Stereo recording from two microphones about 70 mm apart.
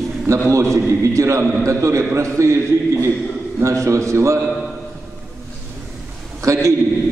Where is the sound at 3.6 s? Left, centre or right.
Right.